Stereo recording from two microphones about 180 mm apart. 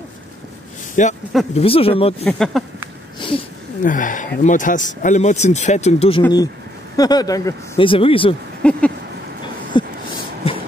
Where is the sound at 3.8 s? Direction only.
45° left (ahead or behind).